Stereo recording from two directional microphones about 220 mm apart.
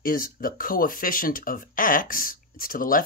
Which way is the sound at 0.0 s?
40° left (ahead or behind).